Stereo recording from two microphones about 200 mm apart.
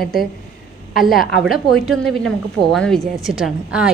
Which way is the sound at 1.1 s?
45° left (ahead or behind).